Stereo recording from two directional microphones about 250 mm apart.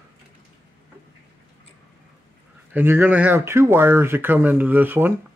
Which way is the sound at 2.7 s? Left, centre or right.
Centre.